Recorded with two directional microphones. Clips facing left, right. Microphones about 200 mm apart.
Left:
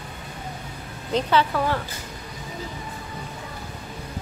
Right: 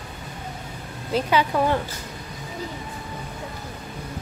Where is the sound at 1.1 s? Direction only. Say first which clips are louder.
Even; 15° right (ahead or behind).